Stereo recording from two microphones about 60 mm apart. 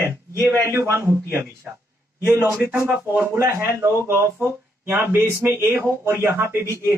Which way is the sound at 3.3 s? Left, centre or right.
Right.